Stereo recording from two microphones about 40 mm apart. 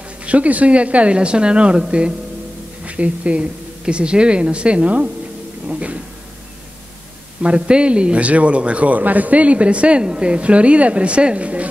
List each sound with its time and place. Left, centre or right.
0.2 s a woman's voice: right
7.4 s speech: right